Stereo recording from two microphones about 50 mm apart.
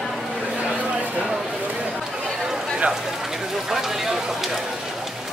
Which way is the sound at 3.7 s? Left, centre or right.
Centre.